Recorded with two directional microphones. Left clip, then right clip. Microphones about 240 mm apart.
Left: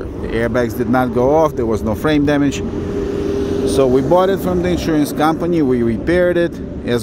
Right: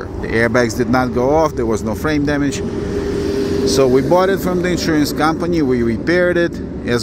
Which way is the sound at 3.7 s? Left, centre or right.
Centre.